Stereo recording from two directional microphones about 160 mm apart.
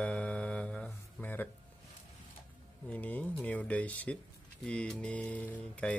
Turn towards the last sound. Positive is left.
turn(degrees=10)  # may be behind; listen again after turning